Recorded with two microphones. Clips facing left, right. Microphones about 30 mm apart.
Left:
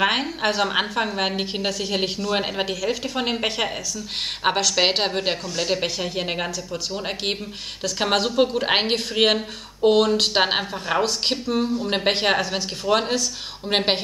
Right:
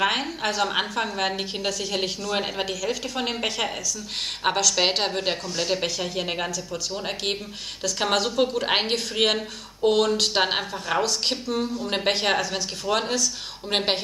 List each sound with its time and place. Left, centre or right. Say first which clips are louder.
0.0 s a woman's voice: left 3 dB; centre
2.3 s a woman's voice: left 2 dB; centre
2.6 s a woman's voice: left 3 dB; left
3.2 s a woman's voice: left 2 dB; centre
12.4 s a woman's voice: left 2 dB; left